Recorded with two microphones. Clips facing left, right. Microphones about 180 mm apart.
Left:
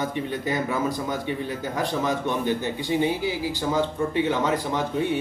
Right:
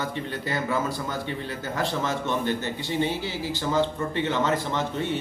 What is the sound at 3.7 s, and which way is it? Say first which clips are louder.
A man's voice: left 1 dB; 10° left (ahead or behind).